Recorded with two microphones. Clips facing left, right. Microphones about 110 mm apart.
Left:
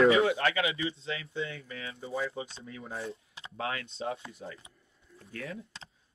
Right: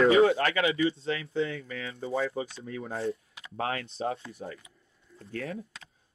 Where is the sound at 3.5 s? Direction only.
40° right (ahead or behind).